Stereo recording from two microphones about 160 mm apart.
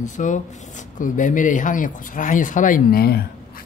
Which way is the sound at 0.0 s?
50° left (ahead or behind).